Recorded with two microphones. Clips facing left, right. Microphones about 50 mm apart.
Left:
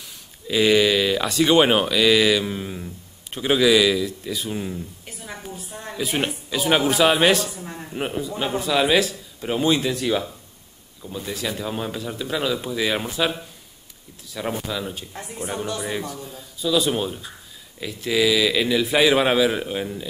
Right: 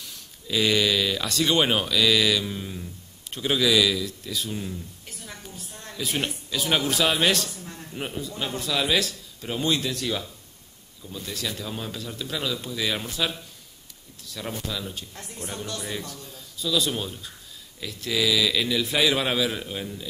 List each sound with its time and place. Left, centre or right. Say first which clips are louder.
0.0 s a man's voice: left 3 dB; centre